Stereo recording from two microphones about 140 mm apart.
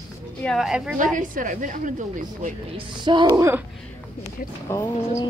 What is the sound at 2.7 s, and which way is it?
Speech, 35° right (ahead or behind).